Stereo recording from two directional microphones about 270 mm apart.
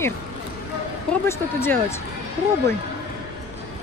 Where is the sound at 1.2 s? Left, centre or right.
Centre.